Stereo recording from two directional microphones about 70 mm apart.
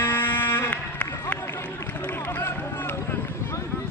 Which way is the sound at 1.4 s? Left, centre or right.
Left.